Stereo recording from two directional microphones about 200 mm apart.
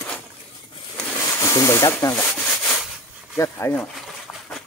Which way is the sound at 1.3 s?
15° left (ahead or behind).